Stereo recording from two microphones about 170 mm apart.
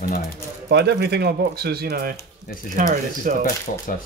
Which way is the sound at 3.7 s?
50° left (ahead or behind).